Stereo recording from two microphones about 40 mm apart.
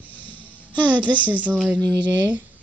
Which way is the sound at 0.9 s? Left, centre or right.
Right.